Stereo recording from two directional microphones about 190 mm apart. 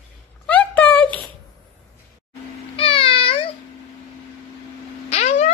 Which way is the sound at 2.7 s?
30° left (ahead or behind).